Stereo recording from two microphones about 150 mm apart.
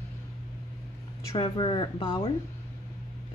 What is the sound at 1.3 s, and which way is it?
Speech, 35° left (ahead or behind).